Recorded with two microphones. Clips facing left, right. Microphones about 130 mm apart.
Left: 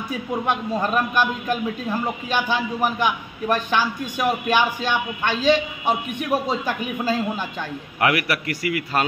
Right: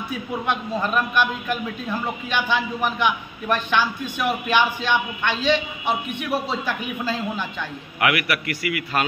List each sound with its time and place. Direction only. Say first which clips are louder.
0.5 s a man's voice: left 1 dB; 40° left (ahead or behind)
8.0 s a man's voice: left 1 dB; 35° left (ahead or behind)